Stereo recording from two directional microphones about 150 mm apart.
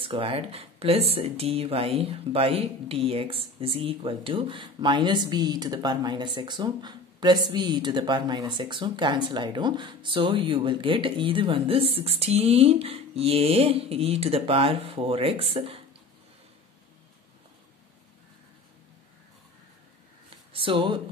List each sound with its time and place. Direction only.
0.0 s speech: 35° right (ahead or behind)
20.5 s speech: 35° right (ahead or behind)